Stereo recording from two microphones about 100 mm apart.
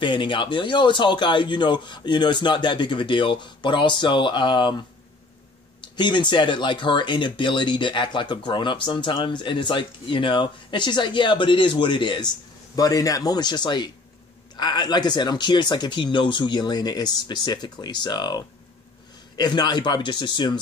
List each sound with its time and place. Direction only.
0.0 s speech: 55° left (ahead or behind)
12.7 s speech: 35° left (ahead or behind)